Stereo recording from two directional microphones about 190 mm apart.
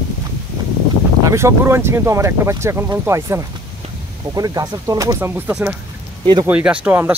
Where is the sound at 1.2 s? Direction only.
15° right (ahead or behind).